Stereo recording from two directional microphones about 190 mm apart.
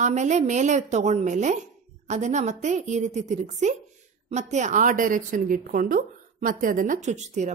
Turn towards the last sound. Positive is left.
turn(degrees=-40)  # may be behind; listen again after turning